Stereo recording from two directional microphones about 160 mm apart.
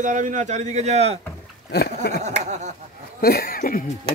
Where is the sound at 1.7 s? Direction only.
90° left.